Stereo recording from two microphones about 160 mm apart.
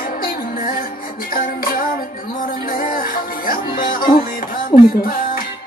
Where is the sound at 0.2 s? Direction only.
60° left (ahead or behind).